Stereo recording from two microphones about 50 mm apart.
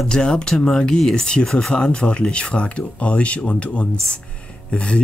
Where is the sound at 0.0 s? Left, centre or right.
Centre.